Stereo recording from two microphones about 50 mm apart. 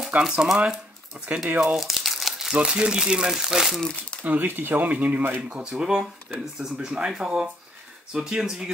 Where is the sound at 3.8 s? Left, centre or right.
Centre.